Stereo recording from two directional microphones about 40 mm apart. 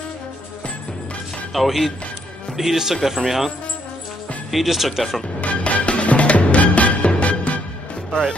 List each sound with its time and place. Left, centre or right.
1.5 s speech: centre
5.4 s music: left
8.1 s speech: left